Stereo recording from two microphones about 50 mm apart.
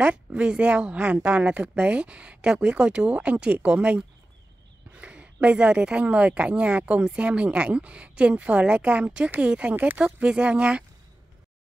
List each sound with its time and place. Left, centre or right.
0.0 s a woman's voice: right